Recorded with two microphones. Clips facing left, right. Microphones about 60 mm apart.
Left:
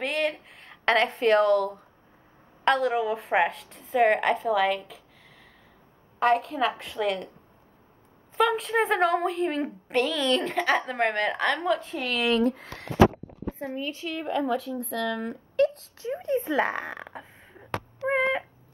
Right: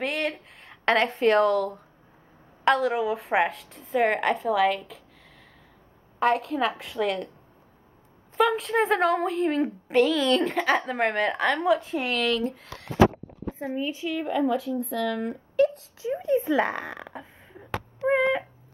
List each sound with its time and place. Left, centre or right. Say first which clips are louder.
0.0 s a woman's voice: left 1 dB; centre
6.1 s a woman's voice: even; centre
8.4 s a woman's voice: right 1 dB; centre
12.5 s speech: left 1 dB; left
13.6 s speech: right 4 dB; centre